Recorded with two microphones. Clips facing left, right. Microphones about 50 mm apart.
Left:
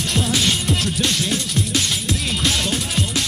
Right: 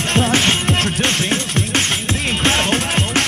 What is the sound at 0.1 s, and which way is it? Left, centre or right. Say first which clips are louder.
Music: right 5 dB; right.